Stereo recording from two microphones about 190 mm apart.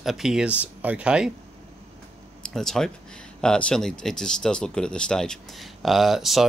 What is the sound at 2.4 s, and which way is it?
Speech, centre (ahead or behind).